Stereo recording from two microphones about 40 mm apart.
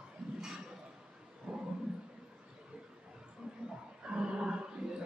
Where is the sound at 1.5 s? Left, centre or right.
Centre.